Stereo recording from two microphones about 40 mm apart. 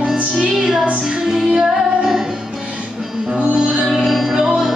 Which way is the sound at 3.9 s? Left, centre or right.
Centre.